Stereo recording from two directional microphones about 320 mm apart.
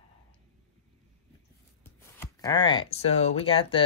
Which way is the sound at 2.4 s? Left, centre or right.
Centre.